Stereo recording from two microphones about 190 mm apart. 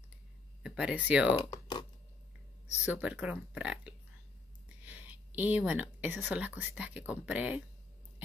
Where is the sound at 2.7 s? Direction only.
5° right (ahead or behind).